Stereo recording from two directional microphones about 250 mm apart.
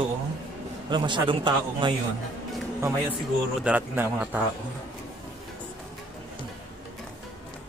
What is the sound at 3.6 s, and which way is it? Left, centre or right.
Speech, centre.